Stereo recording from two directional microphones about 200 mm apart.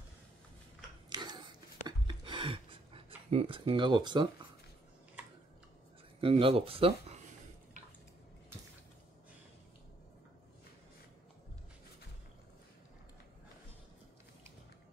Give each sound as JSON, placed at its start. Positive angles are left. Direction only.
{"t": 1.1, "sound": "a sound", "side_deg": -20}
{"t": 3.3, "sound": "speech", "side_deg": -30}
{"t": 6.2, "sound": "speech", "side_deg": -25}